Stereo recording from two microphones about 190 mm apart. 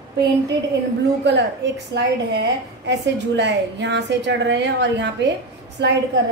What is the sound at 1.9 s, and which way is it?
A woman's voice, 60° right (ahead or behind).